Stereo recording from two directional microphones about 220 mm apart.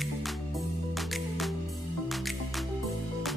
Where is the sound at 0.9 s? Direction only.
Centre (ahead or behind).